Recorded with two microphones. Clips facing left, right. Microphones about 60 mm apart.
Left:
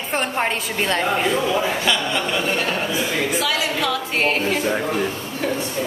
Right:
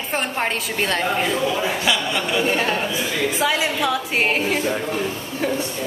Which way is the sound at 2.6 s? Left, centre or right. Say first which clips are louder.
Even; right.